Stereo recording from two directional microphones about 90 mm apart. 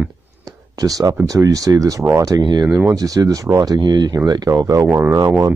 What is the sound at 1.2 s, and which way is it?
Speech, 40° right (ahead or behind).